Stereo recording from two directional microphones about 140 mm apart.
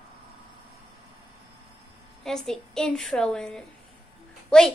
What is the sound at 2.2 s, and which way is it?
A woman's voice, 5° left (ahead or behind).